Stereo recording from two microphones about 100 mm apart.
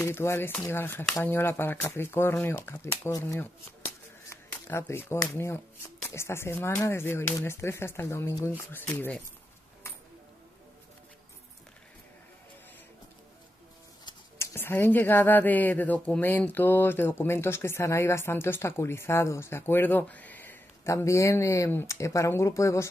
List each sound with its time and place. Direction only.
0.0 s speech: 25° left (ahead or behind)
4.5 s speech: 25° left (ahead or behind)
14.4 s speech: 20° left (ahead or behind)
20.8 s speech: 30° left (ahead or behind)